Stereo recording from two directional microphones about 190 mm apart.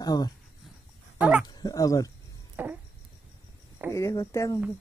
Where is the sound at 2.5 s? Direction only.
10° right (ahead or behind).